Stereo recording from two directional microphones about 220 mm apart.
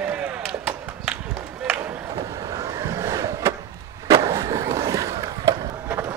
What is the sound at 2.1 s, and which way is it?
Skateboard, 15° right (ahead or behind).